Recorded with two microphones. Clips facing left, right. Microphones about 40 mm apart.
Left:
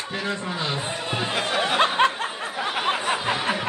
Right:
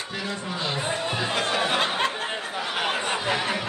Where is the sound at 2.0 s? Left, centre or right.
Left.